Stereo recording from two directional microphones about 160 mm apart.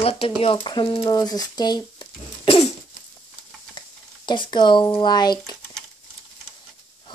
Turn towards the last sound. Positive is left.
turn(degrees=25)  # may be behind; listen again after turning